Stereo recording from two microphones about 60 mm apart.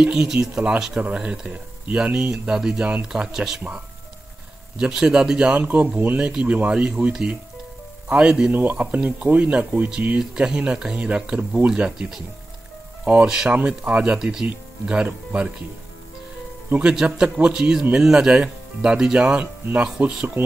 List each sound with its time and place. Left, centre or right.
0.0 s speech: centre
2.5 s speech: centre
2.8 s speech: right
3.3 s speech: centre
4.7 s speech: centre
5.5 s speech: right
16.6 s speech: right
16.9 s speech: centre
19.4 s speech: right